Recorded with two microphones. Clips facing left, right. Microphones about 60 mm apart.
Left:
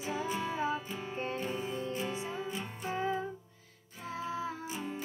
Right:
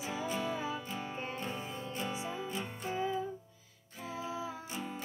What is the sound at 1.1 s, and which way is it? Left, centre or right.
Music, left.